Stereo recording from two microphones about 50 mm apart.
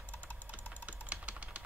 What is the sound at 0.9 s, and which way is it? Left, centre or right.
Typing, right.